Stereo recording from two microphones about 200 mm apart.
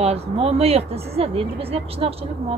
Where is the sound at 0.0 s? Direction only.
30° right (ahead or behind).